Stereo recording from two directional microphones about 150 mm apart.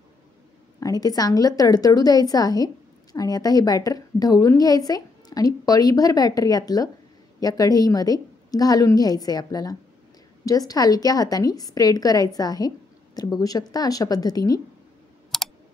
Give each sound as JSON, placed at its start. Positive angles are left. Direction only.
{"t": 0.7, "sound": "a woman's voice", "side_deg": 25}
{"t": 15.3, "sound": "clicking", "side_deg": 0}